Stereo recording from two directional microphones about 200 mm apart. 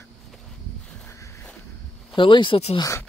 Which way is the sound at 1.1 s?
15° left (ahead or behind).